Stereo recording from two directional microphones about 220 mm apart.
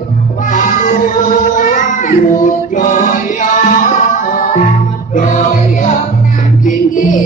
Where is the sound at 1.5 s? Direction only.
35° left (ahead or behind).